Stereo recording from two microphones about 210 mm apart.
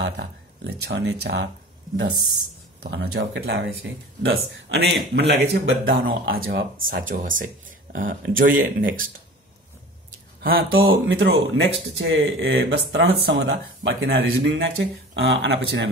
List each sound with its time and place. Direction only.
0.0 s speech: 50° right (ahead or behind)
2.8 s speech: 50° right (ahead or behind)
5.7 s speech: 65° right (ahead or behind)
6.9 s speech: 40° right (ahead or behind)
10.4 s speech: 45° right (ahead or behind)